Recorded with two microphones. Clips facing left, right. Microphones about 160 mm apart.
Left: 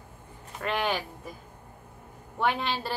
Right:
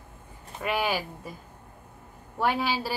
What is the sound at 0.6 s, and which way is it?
Speech, 10° right (ahead or behind).